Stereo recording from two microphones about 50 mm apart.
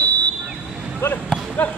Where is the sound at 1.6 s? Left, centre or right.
Left.